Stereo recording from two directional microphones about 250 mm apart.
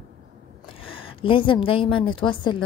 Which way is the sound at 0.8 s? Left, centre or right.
Left.